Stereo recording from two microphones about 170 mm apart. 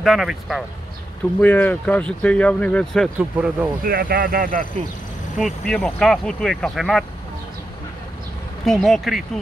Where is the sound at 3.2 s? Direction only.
5° right (ahead or behind).